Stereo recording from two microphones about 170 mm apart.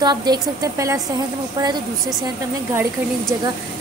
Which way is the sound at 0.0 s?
25° right (ahead or behind).